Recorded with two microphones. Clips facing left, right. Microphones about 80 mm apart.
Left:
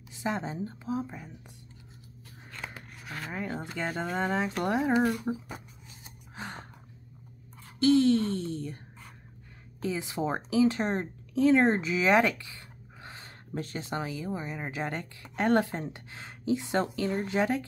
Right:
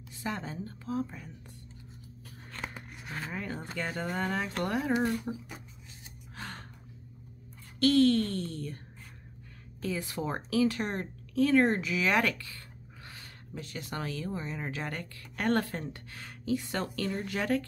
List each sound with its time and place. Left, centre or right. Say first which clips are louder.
0.1 s speech: left 4 dB; left
2.7 s shuffling cards: even; centre
3.3 s speech: left 4 dB; centre; by 5.4 s left
6.3 s gasp: left 3 dB; centre
7.8 s speech: left 1 dB; centre
9.8 s speech: left 3 dB; centre